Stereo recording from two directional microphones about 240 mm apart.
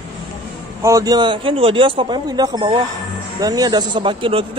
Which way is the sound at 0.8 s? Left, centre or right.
Centre.